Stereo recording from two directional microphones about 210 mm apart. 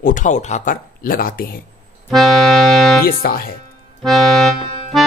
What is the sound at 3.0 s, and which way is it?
Speech, 45° left (ahead or behind).